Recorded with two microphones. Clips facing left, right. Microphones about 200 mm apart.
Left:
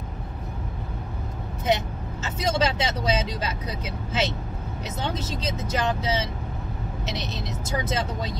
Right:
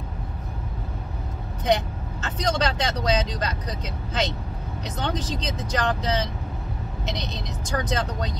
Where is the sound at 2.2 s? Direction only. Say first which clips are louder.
Even; 5° left (ahead or behind).